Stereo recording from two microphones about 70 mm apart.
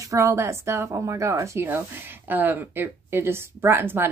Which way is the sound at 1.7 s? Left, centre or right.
Right.